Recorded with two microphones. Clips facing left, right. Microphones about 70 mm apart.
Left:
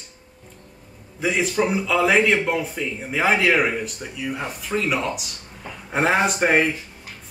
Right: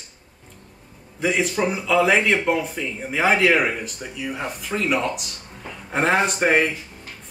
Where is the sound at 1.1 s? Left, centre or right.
Centre.